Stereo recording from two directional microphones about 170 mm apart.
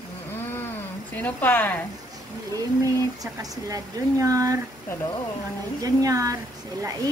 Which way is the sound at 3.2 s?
20° right (ahead or behind).